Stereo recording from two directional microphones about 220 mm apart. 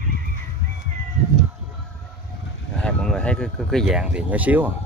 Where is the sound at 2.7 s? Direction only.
5° left (ahead or behind).